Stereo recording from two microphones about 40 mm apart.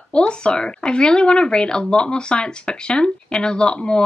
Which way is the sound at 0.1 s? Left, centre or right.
Left.